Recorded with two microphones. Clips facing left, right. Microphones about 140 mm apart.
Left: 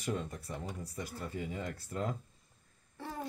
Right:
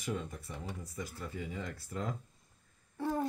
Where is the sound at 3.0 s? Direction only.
50° right (ahead or behind).